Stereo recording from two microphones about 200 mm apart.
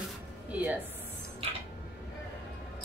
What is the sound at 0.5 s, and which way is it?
Speech, 5° right (ahead or behind).